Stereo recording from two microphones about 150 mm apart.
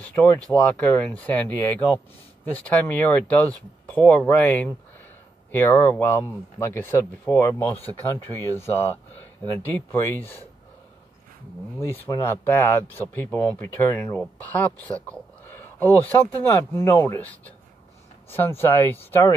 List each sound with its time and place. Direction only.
0.5 s speech: 5° left (ahead or behind)
11.8 s speech: 15° left (ahead or behind)